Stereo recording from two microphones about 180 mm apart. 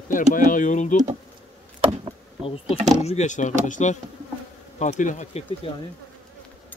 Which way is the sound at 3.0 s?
40° left (ahead or behind).